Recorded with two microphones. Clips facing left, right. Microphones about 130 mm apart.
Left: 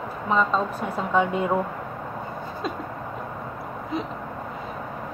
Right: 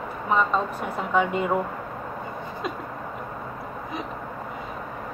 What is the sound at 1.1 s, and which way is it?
Speech, 5° right (ahead or behind).